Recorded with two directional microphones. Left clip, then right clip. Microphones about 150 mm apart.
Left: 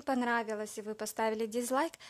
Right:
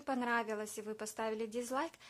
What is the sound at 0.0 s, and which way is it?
A woman's voice, 30° left (ahead or behind).